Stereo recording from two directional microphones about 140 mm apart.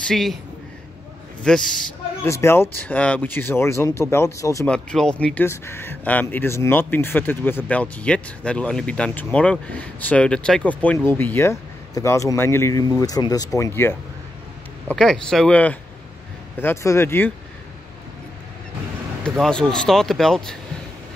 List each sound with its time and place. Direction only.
0.1 s speech: centre (ahead or behind)
1.4 s speech: 5° left (ahead or behind)
2.2 s speech: 20° left (ahead or behind)
4.6 s speech: 5° left (ahead or behind)
14.9 s speech: 5° left (ahead or behind)
19.2 s speech: 5° left (ahead or behind)